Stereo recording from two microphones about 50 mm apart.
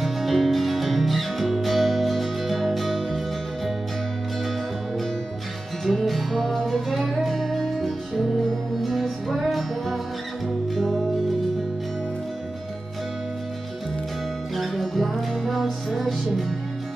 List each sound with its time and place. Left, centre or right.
0.0 s music: centre
5.9 s music: centre
14.5 s music: centre